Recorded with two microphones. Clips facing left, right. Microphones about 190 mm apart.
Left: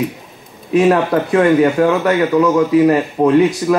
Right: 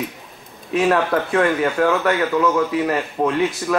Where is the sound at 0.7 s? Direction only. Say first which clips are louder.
Left 5 dB; 15° left (ahead or behind).